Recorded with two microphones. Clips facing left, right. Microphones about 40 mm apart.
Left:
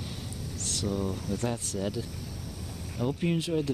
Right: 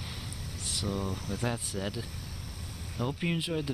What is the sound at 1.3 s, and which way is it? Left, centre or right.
Speech, centre.